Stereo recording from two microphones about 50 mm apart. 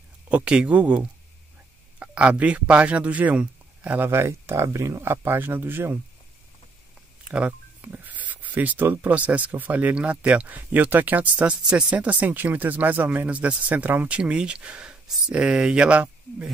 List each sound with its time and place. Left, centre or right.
0.3 s speech: right
4.0 s speech: right
5.0 s speech: right
7.2 s a sound: right
9.1 s speech: right
9.9 s speech: right